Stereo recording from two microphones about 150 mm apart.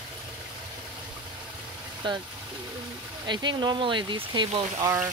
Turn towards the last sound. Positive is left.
turn(degrees=-25)  # may be behind; listen again after turning